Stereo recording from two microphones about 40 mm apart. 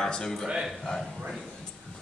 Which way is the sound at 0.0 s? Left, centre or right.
Centre.